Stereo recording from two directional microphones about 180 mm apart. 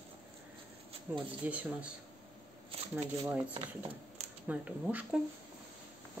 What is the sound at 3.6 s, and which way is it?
Speech, 30° right (ahead or behind).